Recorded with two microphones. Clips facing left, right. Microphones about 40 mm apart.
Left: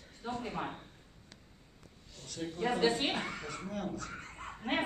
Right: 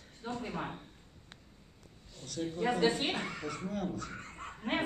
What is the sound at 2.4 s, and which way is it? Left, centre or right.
Speech, left.